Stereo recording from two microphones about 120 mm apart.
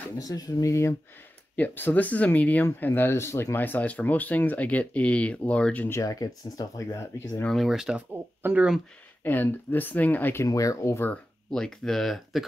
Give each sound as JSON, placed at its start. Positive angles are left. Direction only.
{"t": 0.2, "sound": "speech", "side_deg": 30}
{"t": 7.4, "sound": "speech", "side_deg": 0}
{"t": 8.4, "sound": "speech", "side_deg": -15}
{"t": 9.2, "sound": "speech", "side_deg": 15}
{"t": 11.5, "sound": "speech", "side_deg": 5}